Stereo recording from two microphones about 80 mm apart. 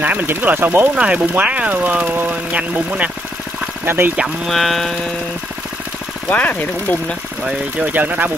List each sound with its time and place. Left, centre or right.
0.0 s speech: right
4.5 s music: centre
6.3 s speech: centre
7.8 s speech: right